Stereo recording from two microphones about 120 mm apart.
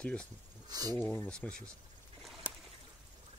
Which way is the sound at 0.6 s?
30° right (ahead or behind).